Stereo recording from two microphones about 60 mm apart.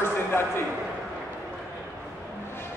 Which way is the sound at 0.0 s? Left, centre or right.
Left.